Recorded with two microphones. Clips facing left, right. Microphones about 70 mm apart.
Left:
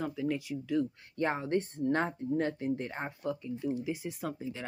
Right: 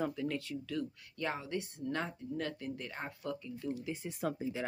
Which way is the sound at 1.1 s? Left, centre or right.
Left.